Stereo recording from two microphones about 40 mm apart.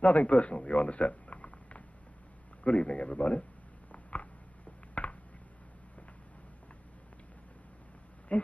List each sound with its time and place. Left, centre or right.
0.0 s a man's voice: left
3.9 s a sound: left
8.3 s speech: left